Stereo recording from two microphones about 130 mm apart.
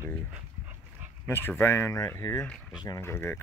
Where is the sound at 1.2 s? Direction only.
15° left (ahead or behind).